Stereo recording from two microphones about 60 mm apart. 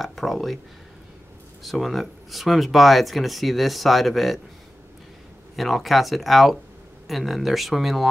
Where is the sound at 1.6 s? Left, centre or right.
Centre.